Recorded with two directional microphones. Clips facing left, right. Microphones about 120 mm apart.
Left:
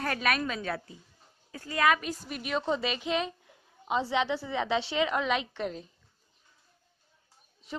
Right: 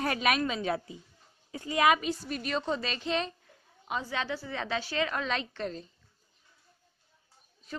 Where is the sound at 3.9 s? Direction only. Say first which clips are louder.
Left 5 dB; 25° left (ahead or behind).